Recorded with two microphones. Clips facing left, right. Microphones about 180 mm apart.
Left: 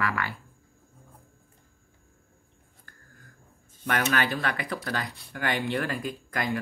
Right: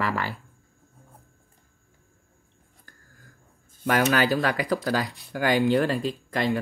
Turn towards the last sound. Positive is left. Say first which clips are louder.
# right 4 dB
turn(degrees=-30)  # may be behind; listen again after turning